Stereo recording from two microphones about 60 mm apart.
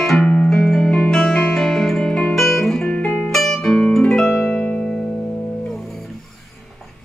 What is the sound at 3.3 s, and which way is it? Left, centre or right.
Music, centre.